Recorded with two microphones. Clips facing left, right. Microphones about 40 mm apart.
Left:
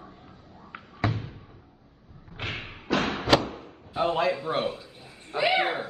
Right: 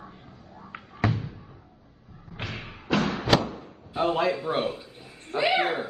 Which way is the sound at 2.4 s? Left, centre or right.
Left.